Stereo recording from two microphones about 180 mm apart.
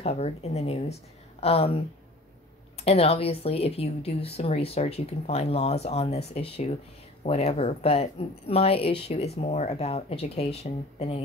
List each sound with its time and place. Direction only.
0.0 s speech: 35° left (ahead or behind)
2.8 s speech: 35° left (ahead or behind)